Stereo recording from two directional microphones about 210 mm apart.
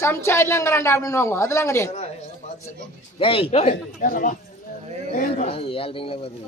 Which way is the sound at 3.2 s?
25° left (ahead or behind).